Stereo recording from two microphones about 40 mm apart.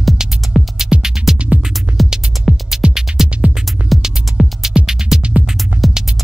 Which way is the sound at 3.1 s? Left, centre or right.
Right.